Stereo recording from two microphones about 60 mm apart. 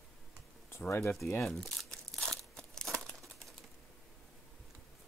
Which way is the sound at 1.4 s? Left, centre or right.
Centre.